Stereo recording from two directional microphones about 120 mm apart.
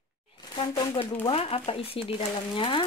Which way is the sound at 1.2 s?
55° left (ahead or behind).